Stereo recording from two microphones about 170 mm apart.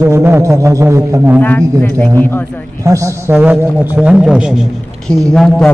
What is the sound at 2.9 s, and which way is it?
A man's voice, 20° right (ahead or behind).